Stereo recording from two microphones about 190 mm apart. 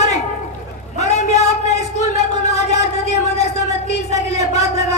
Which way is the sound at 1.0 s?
35° left (ahead or behind).